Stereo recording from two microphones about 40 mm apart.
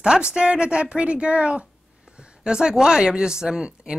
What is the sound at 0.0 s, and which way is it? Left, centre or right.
Speech, centre.